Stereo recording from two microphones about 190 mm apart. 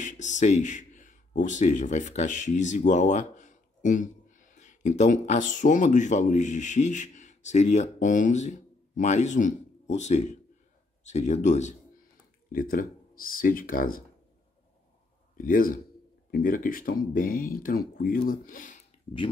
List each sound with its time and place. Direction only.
0.0 s speech: 40° left (ahead or behind)
12.5 s speech: 50° left (ahead or behind)
15.3 s speech: 45° left (ahead or behind)